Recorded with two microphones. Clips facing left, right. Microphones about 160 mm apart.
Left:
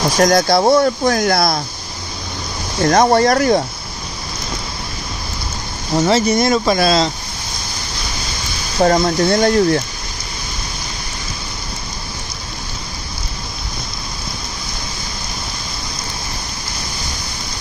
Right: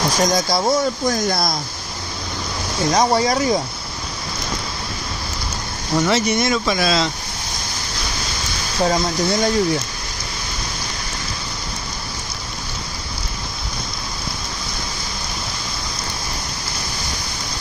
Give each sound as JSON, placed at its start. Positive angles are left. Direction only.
{"t": 0.2, "sound": "speech", "side_deg": 65}
{"t": 2.8, "sound": "speech", "side_deg": 55}
{"t": 5.9, "sound": "speech", "side_deg": 35}
{"t": 8.8, "sound": "speech", "side_deg": 55}